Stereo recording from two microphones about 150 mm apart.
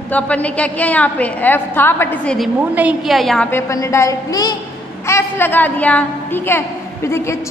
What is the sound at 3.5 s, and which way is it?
A woman's voice, 20° left (ahead or behind).